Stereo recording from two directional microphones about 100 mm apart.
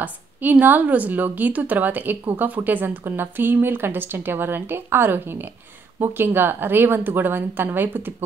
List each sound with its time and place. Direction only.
0.0 s a woman's voice: 15° right (ahead or behind)